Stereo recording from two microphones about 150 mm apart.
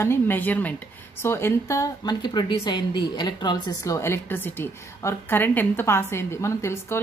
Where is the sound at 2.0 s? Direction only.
30° left (ahead or behind).